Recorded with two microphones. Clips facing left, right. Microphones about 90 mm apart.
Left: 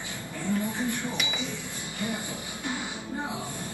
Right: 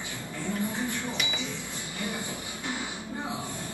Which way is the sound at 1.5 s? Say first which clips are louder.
Left 1 dB; 20° left (ahead or behind).